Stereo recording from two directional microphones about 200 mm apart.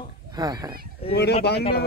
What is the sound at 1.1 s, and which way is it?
Speech, 55° left (ahead or behind).